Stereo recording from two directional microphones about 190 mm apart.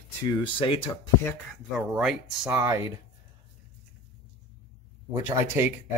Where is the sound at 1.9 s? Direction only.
5° right (ahead or behind).